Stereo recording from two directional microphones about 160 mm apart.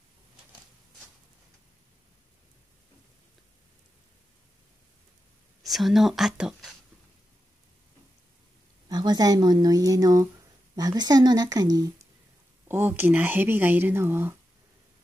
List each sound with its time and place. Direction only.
5.6 s speech: centre (ahead or behind)
8.8 s speech: 25° right (ahead or behind)
12.6 s speech: 15° right (ahead or behind)